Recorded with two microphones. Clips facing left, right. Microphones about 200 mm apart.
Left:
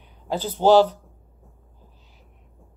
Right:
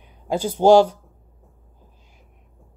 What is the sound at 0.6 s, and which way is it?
Speech, 10° right (ahead or behind).